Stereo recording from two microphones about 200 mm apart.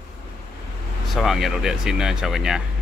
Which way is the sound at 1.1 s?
Centre (ahead or behind).